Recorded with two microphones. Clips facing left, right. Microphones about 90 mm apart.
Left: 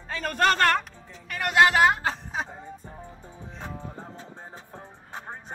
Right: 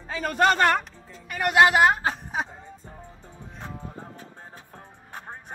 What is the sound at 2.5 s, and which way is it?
Music, 15° left (ahead or behind).